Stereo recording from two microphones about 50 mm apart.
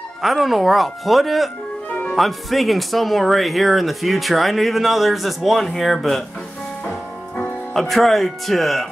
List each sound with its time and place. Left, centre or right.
0.2 s speech: centre
6.8 s music: left
7.7 s speech: centre